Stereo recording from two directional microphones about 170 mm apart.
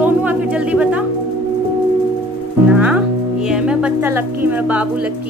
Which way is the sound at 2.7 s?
10° right (ahead or behind).